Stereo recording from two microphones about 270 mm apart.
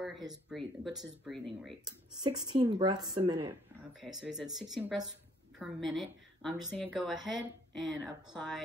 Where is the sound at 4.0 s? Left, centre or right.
Centre.